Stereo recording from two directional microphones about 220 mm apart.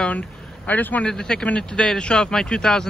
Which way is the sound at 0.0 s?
5° left (ahead or behind).